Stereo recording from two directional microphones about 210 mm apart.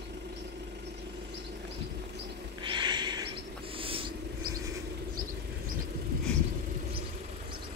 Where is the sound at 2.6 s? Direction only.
20° right (ahead or behind).